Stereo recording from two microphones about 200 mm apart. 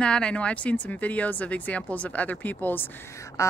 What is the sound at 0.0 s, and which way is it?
Speech, 5° left (ahead or behind).